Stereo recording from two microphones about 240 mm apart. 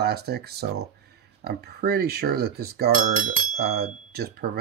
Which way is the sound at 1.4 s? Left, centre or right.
Right.